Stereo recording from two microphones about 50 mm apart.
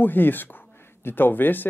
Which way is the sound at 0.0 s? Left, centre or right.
Left.